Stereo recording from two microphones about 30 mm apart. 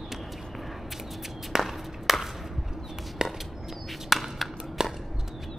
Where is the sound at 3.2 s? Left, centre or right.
Right.